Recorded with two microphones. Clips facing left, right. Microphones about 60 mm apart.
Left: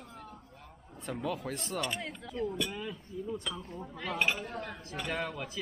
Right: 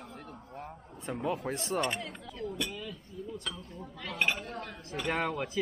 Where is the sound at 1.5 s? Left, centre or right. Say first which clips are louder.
Right 4 dB; right.